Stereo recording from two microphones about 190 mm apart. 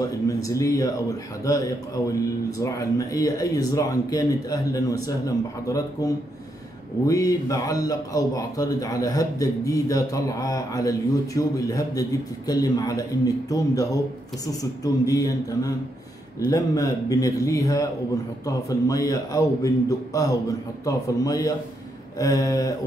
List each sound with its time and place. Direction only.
0.0 s a man's voice: 15° left (ahead or behind)